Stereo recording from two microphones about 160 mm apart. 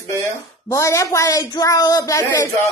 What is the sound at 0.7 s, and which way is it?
Speech, 15° left (ahead or behind).